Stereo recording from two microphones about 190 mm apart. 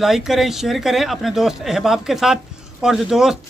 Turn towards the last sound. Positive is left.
turn(degrees=0)  # may be behind; listen again after turning